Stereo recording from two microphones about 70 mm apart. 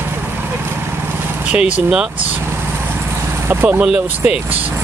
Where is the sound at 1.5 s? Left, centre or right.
Right.